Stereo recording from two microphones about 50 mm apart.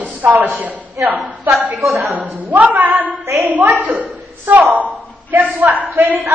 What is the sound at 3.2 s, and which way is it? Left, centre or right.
Speech, right.